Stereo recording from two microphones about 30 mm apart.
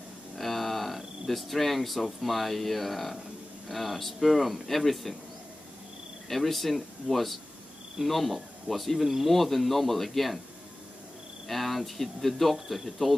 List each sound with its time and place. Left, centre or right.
0.4 s speech: centre
6.2 s speech: centre
11.4 s speech: centre